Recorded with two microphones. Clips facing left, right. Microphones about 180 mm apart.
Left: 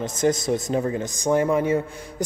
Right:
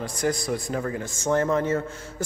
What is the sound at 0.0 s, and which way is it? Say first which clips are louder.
A man's voice: left 4 dB; 20° left (ahead or behind).